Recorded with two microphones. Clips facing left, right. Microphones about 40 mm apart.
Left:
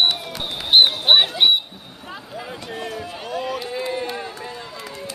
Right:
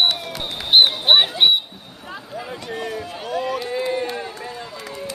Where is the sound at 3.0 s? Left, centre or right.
Centre.